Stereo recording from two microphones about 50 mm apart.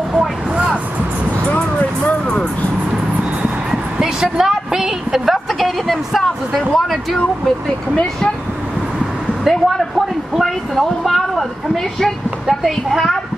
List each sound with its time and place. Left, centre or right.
0.1 s vehicle: centre
1.5 s music: left
4.0 s a sound: centre
6.9 s a woman's voice: centre
9.4 s a woman's voice: centre